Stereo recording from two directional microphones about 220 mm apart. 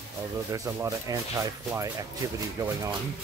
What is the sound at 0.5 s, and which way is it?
Speech, 15° right (ahead or behind).